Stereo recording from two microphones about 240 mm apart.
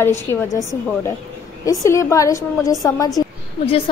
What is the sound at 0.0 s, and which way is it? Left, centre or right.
A woman's voice, centre.